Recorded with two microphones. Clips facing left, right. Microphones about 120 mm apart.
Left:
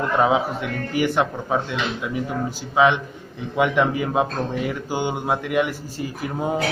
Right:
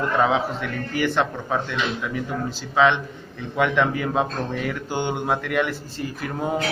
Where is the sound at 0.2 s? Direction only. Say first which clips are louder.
Left 3 dB; 15° left (ahead or behind).